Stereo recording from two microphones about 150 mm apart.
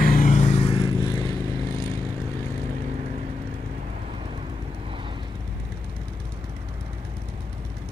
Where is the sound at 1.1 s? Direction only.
25° left (ahead or behind).